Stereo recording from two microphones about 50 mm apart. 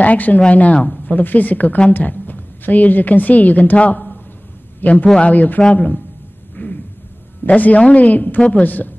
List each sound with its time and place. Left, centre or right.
0.0 s a woman's voice: left
4.8 s a woman's voice: left
6.5 s a sound: left
7.4 s a woman's voice: left
8.6 s a woman's voice: left